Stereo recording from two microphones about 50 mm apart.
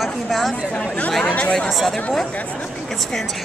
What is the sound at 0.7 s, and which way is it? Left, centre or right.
Speech, left.